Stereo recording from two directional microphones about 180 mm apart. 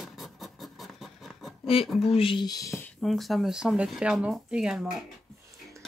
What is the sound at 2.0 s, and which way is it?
Speech, 30° left (ahead or behind).